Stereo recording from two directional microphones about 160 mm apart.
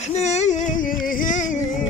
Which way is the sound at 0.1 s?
45° left (ahead or behind).